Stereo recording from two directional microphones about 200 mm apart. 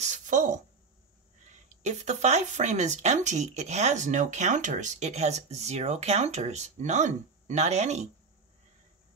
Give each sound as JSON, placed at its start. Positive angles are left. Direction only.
{"t": 0.0, "sound": "a woman's voice", "side_deg": -40}
{"t": 1.7, "sound": "speech", "side_deg": -35}